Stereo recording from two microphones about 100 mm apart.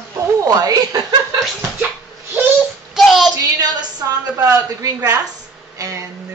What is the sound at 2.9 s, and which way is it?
Child singing, centre (ahead or behind).